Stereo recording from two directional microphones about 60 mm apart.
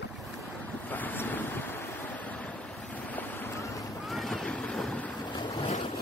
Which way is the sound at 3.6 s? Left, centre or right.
Left.